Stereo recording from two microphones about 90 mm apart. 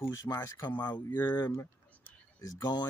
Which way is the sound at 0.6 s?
50° left (ahead or behind).